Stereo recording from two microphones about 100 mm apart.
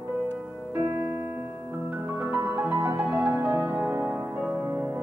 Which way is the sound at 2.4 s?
20° right (ahead or behind).